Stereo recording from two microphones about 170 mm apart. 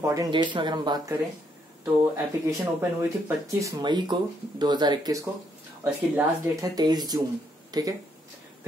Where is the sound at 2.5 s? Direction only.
15° right (ahead or behind).